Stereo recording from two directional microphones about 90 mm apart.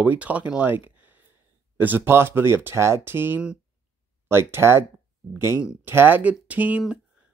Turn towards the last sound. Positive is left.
turn(degrees=-15)  # may be behind; listen again after turning